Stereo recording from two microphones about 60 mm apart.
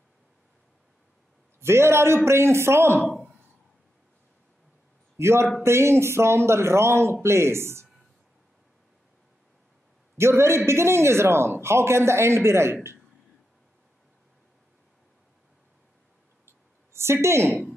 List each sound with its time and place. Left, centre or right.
1.6 s a man's voice: right
5.1 s a man's voice: right
10.1 s a man's voice: right
16.9 s a woman's voice: right